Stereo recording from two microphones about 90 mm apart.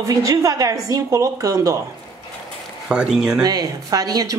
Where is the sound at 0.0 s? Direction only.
35° right (ahead or behind).